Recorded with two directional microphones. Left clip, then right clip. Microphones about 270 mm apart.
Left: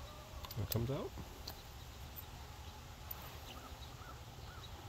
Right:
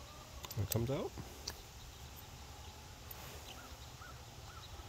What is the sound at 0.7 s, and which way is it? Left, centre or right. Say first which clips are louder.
Speech: right 3 dB; right.